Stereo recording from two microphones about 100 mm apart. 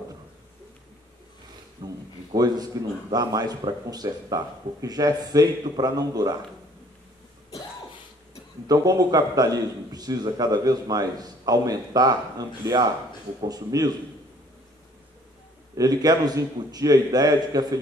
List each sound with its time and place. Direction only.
1.8 s a sound: 45° right (ahead or behind)
2.3 s a man's voice: 40° right (ahead or behind)
8.6 s a man's voice: 40° right (ahead or behind)
15.7 s a man's voice: 40° right (ahead or behind)